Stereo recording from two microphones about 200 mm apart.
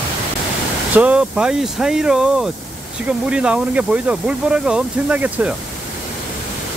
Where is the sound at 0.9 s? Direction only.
5° right (ahead or behind).